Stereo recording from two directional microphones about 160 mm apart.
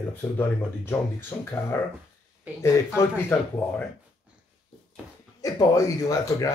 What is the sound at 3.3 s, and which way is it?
Speech, 10° left (ahead or behind).